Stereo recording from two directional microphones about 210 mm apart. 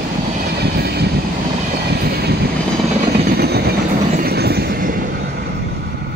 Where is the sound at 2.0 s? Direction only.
50° right (ahead or behind).